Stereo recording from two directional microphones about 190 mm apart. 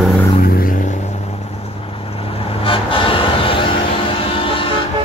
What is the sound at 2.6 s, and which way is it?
Music, 25° left (ahead or behind).